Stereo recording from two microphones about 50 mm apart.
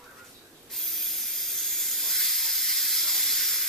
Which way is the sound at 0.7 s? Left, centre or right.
Centre.